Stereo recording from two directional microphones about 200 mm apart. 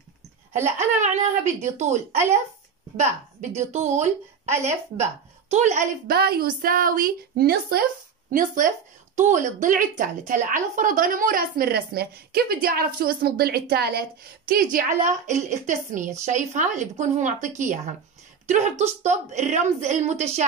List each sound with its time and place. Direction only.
0.7 s a woman's voice: 35° right (ahead or behind)
3.0 s a woman's voice: 35° right (ahead or behind)